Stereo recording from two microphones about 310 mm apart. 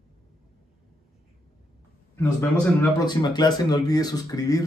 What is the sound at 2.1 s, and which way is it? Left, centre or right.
Speech, centre.